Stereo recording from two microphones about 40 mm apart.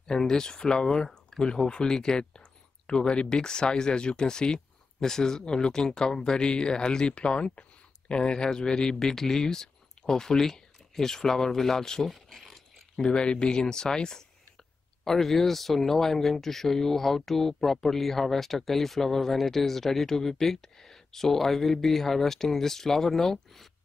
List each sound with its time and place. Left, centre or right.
0.0 s speech: centre
12.1 s a sound: centre
13.0 s speech: left; by 23.7 s centre